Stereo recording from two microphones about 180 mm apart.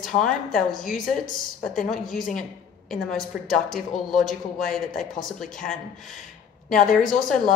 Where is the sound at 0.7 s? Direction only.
50° left (ahead or behind).